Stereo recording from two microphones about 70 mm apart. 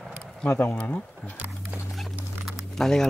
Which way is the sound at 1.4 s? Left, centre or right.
Right.